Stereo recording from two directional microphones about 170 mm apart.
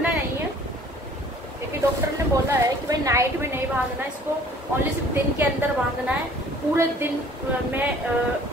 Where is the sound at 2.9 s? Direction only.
15° right (ahead or behind).